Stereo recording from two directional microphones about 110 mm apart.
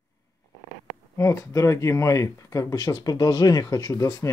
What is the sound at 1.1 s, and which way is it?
Speech, 30° left (ahead or behind).